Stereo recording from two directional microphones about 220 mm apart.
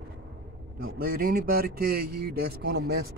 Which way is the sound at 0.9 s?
40° right (ahead or behind).